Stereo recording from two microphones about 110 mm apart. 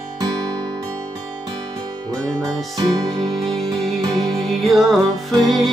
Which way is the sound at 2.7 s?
35° right (ahead or behind).